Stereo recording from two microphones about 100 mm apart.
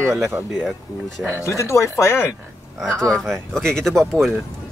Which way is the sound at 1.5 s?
30° left (ahead or behind).